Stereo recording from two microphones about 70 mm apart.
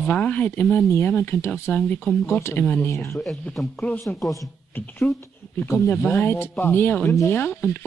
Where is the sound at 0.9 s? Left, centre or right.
Left.